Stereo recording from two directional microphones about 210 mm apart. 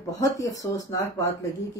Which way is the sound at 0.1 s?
15° left (ahead or behind).